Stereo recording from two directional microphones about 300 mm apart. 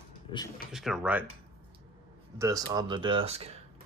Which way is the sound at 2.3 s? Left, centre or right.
Centre.